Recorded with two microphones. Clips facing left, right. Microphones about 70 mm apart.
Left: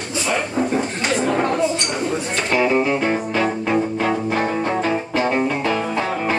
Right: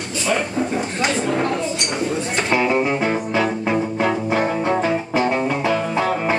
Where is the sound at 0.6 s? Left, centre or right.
Left.